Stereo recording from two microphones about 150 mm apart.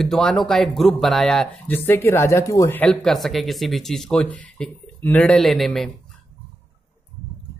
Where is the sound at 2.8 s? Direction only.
Centre (ahead or behind).